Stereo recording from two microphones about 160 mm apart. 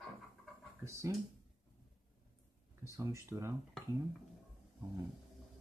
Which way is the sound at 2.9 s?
20° right (ahead or behind).